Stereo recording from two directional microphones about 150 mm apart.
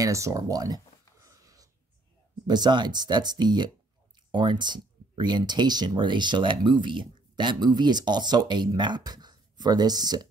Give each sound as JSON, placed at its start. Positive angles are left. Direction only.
{"t": 0.0, "sound": "speech", "side_deg": -20}
{"t": 1.2, "sound": "wheeze", "side_deg": -25}
{"t": 2.4, "sound": "speech", "side_deg": -30}